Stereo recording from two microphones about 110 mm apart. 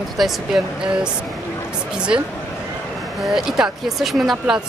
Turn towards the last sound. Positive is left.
turn(degrees=-5)  # may be behind; listen again after turning